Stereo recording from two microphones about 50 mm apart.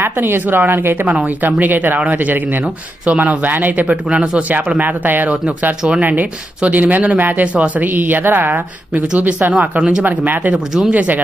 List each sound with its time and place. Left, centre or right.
0.0 s speech: right
7.9 s speech: right
9.5 s speech: right
10.0 s speech: right